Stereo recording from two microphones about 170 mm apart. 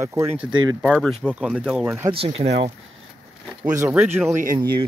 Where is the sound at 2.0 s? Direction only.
35° right (ahead or behind).